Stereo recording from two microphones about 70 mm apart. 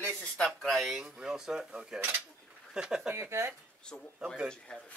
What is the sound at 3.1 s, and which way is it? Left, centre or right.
Speech, right.